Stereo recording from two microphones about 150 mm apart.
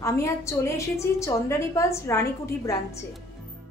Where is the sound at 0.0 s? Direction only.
20° left (ahead or behind).